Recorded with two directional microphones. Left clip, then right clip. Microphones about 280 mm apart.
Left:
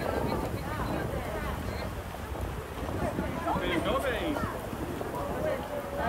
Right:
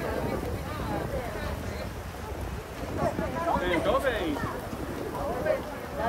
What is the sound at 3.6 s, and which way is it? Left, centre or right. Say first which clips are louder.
Vehicle: right 4 dB; right.